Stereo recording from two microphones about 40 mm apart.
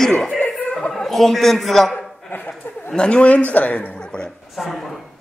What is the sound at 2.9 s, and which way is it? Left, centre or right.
A man's voice, left.